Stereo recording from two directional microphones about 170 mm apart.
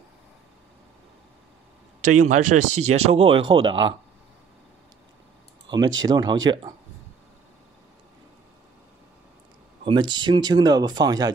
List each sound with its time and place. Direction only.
2.1 s speech: 45° right (ahead or behind); by 3.7 s 30° right (ahead or behind)
5.7 s speech: 25° right (ahead or behind)
9.8 s speech: 25° right (ahead or behind)